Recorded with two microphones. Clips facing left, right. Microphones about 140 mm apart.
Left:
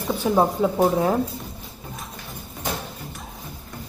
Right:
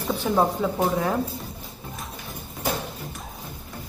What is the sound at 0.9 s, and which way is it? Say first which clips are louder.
Speech: left 4 dB; 30° left (ahead or behind).